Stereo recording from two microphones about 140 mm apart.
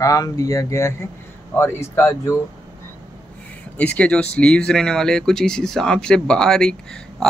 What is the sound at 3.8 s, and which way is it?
Speech, 10° left (ahead or behind).